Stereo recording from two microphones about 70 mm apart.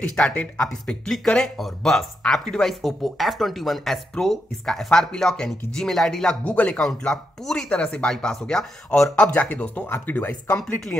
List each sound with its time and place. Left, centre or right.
0.0 s speech: centre
6.4 s speech: left
9.3 s speech: centre
9.8 s speech: left